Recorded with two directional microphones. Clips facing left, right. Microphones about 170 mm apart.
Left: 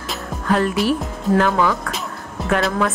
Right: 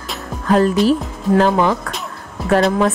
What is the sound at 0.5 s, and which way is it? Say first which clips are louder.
A woman's voice: right 5 dB; 35° right (ahead or behind).